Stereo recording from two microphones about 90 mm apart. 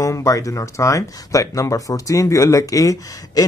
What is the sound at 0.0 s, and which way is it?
Speech, 35° left (ahead or behind).